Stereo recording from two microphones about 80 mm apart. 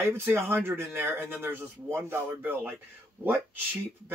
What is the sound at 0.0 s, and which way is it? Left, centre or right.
Speech, right.